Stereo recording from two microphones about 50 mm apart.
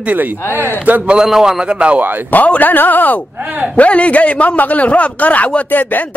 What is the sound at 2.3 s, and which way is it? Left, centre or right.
Speech, left.